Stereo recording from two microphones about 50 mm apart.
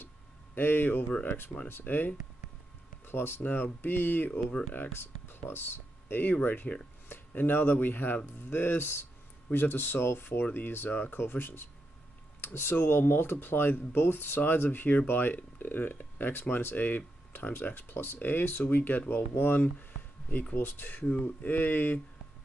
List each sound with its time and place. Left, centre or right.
0.6 s speech: left